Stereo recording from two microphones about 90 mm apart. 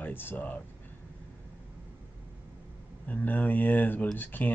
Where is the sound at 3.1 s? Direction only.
20° left (ahead or behind).